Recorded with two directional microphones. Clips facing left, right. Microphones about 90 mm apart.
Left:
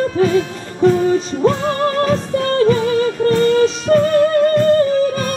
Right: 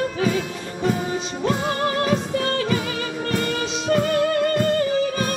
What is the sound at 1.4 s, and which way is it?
Music, 40° left (ahead or behind).